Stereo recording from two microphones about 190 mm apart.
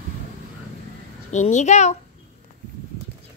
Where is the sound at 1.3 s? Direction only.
40° left (ahead or behind).